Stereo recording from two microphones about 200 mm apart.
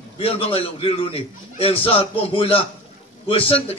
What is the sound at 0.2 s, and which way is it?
A man's voice, 30° left (ahead or behind).